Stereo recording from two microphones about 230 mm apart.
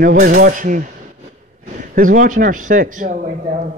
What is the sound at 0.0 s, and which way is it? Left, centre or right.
Speech, right.